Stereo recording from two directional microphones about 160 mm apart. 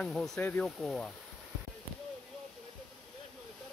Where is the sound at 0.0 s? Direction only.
5° left (ahead or behind).